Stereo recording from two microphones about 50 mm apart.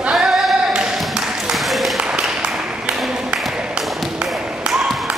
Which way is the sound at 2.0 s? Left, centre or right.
Centre.